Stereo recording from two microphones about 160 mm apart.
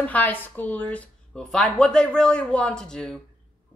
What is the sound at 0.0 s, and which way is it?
Speech, 10° left (ahead or behind).